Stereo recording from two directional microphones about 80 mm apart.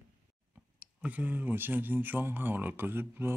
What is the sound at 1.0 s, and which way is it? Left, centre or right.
Speech, right.